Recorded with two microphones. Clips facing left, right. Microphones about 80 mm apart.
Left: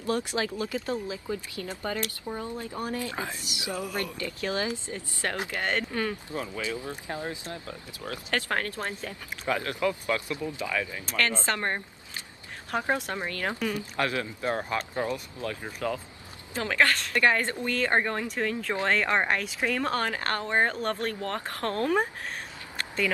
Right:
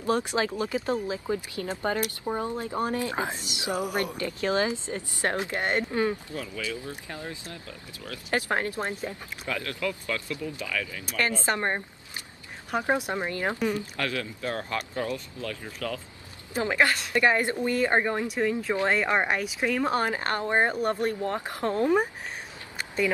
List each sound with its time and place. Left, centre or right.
0.0 s speech: right
1.1 s speech: right
2.3 s speech: right
2.9 s speech: right
6.3 s speech: left
7.2 s speech: left
8.3 s speech: right
9.5 s speech: left
11.1 s a woman's voice: centre
13.9 s speech: left
16.5 s a woman's voice: centre
22.8 s a sound: centre